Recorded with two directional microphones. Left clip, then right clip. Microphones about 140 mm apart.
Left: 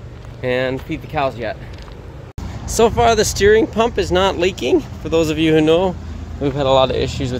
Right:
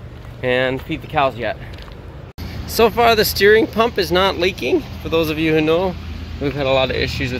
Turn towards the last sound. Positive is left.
turn(degrees=25)  # may be behind; listen again after turning